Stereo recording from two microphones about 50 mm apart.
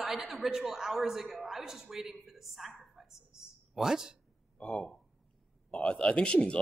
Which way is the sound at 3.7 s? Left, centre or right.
Centre.